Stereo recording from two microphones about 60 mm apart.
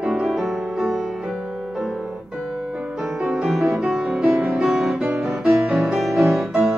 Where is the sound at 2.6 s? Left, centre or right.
Centre.